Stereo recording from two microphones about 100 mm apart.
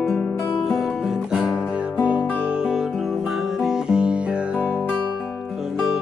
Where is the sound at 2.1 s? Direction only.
10° right (ahead or behind).